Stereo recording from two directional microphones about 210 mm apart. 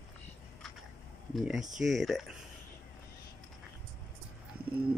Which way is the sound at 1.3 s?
Centre (ahead or behind).